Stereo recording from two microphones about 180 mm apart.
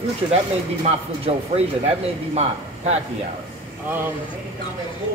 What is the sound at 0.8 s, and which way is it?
Speech, 35° right (ahead or behind).